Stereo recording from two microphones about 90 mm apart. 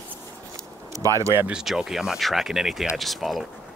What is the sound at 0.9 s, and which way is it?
Speech, 35° right (ahead or behind).